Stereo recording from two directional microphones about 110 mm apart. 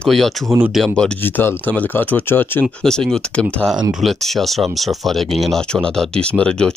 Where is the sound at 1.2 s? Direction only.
20° left (ahead or behind).